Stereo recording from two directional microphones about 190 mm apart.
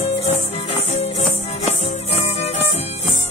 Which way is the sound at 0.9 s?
35° left (ahead or behind).